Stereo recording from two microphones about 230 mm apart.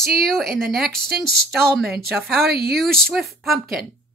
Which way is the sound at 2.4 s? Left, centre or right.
Right.